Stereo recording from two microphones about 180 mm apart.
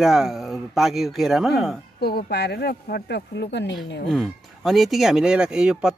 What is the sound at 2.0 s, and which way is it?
Speech, 65° left (ahead or behind).